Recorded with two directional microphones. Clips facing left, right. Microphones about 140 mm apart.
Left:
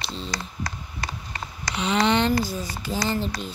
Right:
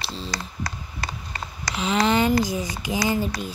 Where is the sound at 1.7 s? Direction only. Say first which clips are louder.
Right 1 dB; centre (ahead or behind).